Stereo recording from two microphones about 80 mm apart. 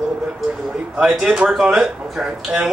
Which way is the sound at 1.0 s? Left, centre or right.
Centre.